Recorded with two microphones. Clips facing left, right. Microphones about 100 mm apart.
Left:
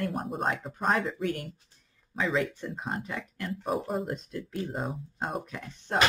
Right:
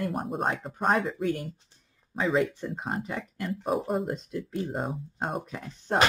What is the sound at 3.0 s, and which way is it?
Speech, 30° right (ahead or behind).